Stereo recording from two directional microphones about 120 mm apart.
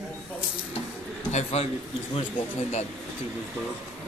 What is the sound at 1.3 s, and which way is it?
Speech, 65° left (ahead or behind).